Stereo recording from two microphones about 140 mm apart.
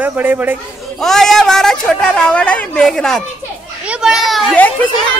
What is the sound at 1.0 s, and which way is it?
Speech, centre (ahead or behind).